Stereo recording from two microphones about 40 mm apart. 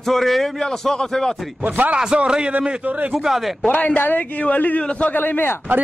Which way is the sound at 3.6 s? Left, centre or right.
Left.